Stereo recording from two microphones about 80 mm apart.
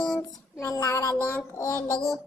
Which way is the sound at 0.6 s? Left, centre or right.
Left.